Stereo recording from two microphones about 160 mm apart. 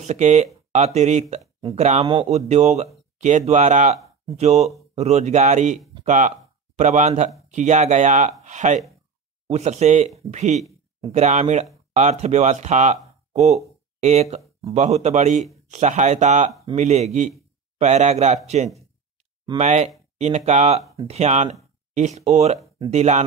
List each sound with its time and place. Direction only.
0.0 s a man's voice: 50° right (ahead or behind)
19.6 s a man's voice: 45° right (ahead or behind)